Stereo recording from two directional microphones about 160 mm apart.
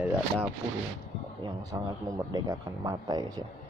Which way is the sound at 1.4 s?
20° right (ahead or behind).